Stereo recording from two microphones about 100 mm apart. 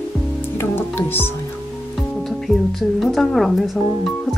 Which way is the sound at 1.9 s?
5° left (ahead or behind).